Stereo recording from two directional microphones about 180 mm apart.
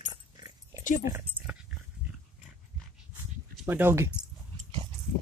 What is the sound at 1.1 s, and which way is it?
Dog, 10° right (ahead or behind).